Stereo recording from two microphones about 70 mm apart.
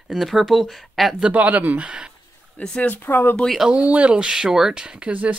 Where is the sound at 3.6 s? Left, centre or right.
Centre.